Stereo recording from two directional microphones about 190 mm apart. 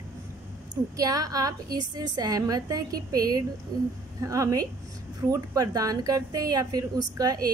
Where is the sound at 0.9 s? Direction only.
20° right (ahead or behind).